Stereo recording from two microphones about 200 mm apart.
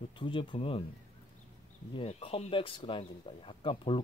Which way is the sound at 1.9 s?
30° left (ahead or behind).